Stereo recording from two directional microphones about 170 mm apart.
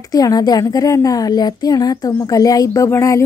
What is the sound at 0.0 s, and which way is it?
A woman's voice, 20° left (ahead or behind).